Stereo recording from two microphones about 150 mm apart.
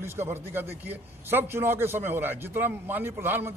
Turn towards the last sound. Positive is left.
turn(degrees=-15)  # may be behind; listen again after turning